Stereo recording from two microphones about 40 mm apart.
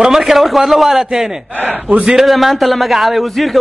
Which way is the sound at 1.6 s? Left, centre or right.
Right.